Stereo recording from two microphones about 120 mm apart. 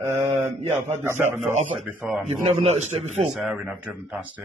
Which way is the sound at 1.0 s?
20° right (ahead or behind).